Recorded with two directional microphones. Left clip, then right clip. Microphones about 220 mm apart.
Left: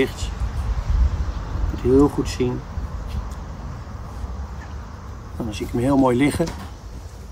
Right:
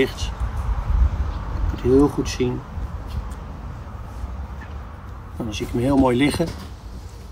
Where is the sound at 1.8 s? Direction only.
5° left (ahead or behind).